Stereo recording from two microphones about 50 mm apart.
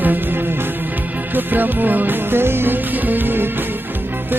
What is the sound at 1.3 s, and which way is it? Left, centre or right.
Music, right.